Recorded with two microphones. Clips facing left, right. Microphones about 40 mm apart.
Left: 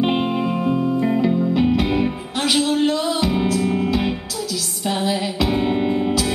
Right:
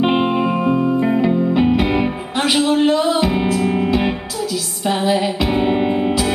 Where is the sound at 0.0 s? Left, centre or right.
Centre.